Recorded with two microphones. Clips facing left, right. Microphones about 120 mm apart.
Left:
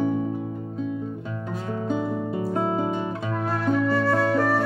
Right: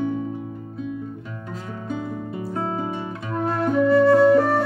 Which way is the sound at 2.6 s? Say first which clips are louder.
Left 1 dB; 15° left (ahead or behind).